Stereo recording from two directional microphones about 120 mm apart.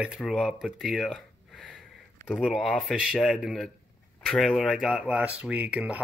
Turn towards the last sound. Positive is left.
turn(degrees=-10)  # may be behind; listen again after turning